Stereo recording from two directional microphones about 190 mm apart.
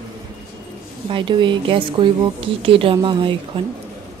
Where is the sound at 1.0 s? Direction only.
25° right (ahead or behind).